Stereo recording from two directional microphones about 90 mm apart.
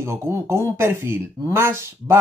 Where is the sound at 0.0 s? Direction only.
30° right (ahead or behind).